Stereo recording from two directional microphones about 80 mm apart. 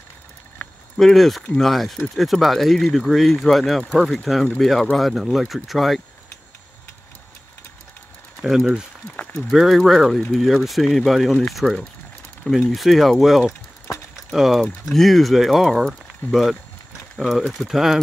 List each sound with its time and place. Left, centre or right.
0.6 s a sound: centre
0.9 s speech: centre
8.4 s speech: centre
9.1 s speech: centre
9.5 s speech: centre
13.5 s a sound: left
14.3 s speech: centre